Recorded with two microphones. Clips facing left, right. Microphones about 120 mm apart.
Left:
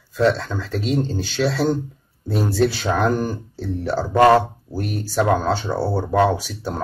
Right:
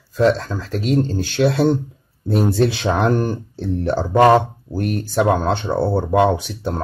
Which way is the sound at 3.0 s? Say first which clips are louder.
Right 2 dB; centre (ahead or behind).